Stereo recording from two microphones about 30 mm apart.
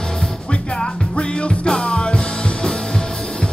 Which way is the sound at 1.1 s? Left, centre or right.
Left.